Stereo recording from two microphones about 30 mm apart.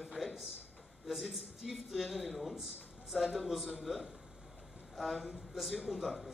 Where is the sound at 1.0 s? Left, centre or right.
Centre.